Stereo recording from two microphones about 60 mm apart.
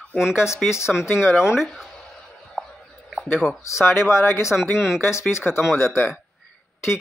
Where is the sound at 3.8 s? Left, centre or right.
Left.